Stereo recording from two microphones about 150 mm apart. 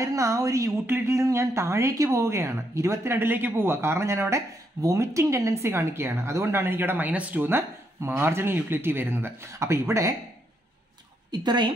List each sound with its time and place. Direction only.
0.0 s speech: 20° right (ahead or behind)
11.3 s speech: 30° right (ahead or behind)